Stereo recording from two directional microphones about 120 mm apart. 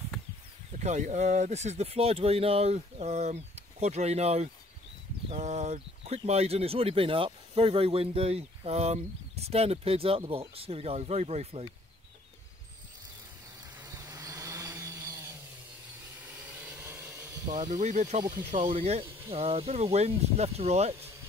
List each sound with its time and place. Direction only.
0.8 s speech: 80° right; by 11.6 s 65° right (ahead or behind)
13.8 s vehicle: 30° right (ahead or behind)
16.3 s a sound: 10° right (ahead or behind)
17.7 s speech: 85° right
18.6 s speech: 50° right (ahead or behind)